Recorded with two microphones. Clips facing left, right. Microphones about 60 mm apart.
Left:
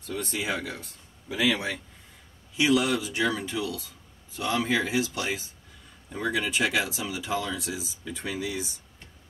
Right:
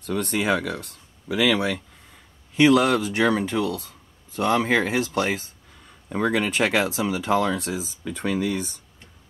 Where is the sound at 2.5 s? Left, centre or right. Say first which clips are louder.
Right 6 dB; right.